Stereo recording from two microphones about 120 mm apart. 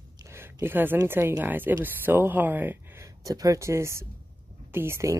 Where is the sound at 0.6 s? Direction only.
15° right (ahead or behind).